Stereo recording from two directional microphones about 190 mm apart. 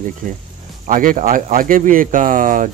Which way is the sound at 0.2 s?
45° right (ahead or behind).